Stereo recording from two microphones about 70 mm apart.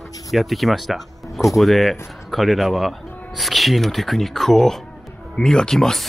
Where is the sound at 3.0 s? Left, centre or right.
Left.